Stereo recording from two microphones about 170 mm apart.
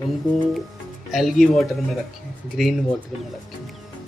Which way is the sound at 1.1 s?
Centre (ahead or behind).